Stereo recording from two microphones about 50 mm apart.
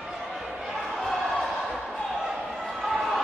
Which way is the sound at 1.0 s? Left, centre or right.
Centre.